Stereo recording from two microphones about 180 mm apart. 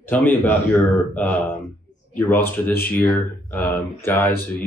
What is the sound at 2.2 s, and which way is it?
Speech, 10° left (ahead or behind).